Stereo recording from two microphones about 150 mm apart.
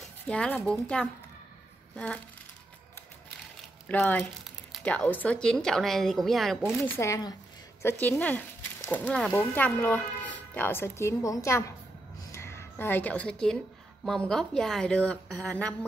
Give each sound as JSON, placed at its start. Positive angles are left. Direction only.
{"t": 0.0, "sound": "a woman's voice", "side_deg": 5}
{"t": 3.9, "sound": "speech", "side_deg": 10}
{"t": 7.0, "sound": "speech", "side_deg": 20}
{"t": 12.2, "sound": "a sound", "side_deg": 20}
{"t": 14.0, "sound": "speech", "side_deg": 0}